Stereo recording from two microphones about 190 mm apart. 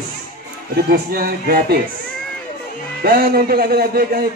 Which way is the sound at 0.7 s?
55° right (ahead or behind).